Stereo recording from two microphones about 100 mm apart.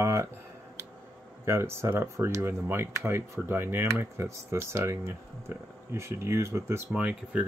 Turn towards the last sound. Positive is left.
turn(degrees=-10)  # may be behind; listen again after turning